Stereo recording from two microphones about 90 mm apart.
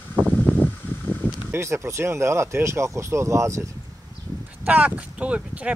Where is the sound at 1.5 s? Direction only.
30° right (ahead or behind).